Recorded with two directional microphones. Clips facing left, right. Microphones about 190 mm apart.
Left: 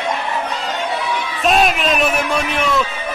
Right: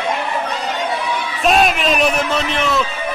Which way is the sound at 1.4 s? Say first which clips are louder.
Right 1 dB; centre (ahead or behind).